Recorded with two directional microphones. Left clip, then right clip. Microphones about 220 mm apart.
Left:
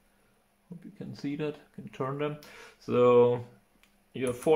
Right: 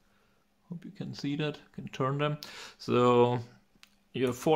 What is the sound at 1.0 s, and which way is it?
Speech, 30° right (ahead or behind).